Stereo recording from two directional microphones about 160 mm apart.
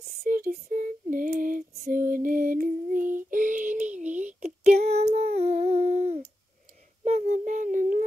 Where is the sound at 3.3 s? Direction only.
55° right (ahead or behind).